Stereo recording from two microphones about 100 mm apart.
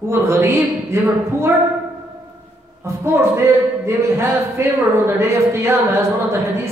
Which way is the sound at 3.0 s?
25° right (ahead or behind).